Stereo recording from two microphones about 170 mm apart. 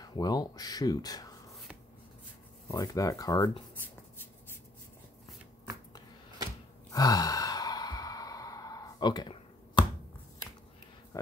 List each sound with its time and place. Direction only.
0.0 s speech: 25° left (ahead or behind)
2.7 s speech: 20° left (ahead or behind)
6.9 s sigh: 20° left (ahead or behind)